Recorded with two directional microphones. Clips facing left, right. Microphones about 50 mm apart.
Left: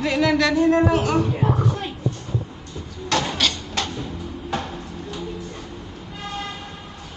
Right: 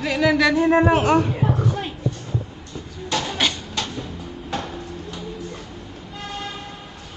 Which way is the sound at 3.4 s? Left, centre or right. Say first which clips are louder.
Even; centre.